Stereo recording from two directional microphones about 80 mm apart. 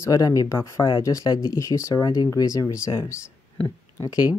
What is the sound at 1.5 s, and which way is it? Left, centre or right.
Speech, left.